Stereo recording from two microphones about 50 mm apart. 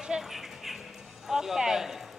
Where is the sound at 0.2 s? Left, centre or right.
Centre.